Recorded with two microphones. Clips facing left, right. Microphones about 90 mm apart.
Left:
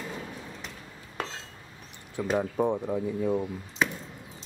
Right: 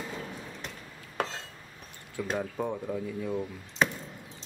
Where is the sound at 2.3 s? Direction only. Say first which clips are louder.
Left 7 dB; 25° left (ahead or behind).